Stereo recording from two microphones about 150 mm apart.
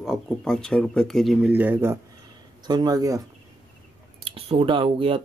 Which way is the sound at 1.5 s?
10° right (ahead or behind).